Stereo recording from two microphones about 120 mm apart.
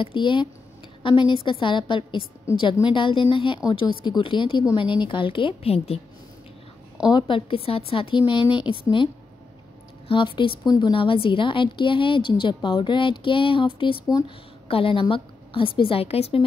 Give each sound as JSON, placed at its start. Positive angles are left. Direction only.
{"t": 0.0, "sound": "a woman's voice", "side_deg": 45}
{"t": 7.1, "sound": "a woman's voice", "side_deg": 40}
{"t": 10.0, "sound": "a woman's voice", "side_deg": 45}
{"t": 14.0, "sound": "speech", "side_deg": 35}
{"t": 14.7, "sound": "a woman's voice", "side_deg": 50}